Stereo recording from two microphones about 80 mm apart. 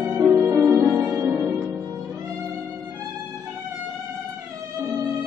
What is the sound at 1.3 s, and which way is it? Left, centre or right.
Music, centre.